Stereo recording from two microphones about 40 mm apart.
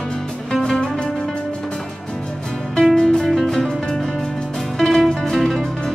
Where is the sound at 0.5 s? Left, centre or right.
Centre.